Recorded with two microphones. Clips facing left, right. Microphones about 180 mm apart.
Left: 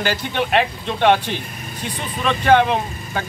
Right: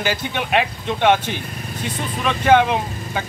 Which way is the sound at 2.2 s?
10° right (ahead or behind).